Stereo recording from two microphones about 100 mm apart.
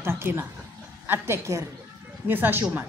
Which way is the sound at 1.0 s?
25° right (ahead or behind).